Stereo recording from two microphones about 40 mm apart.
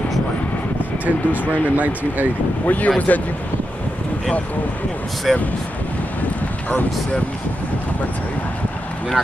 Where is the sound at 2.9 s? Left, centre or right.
Left.